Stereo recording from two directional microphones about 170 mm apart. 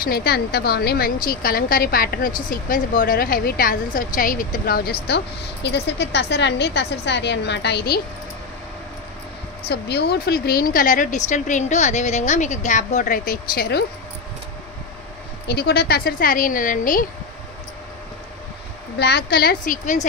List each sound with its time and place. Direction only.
0.0 s a woman's voice: 65° left (ahead or behind)
9.7 s speech: 80° left
15.4 s a woman's voice: 70° left (ahead or behind); by 17.0 s 50° left (ahead or behind)
18.9 s a woman's voice: 75° left (ahead or behind); by 20.1 s 50° left (ahead or behind)